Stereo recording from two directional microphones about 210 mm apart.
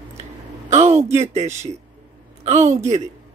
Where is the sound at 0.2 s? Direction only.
35° right (ahead or behind).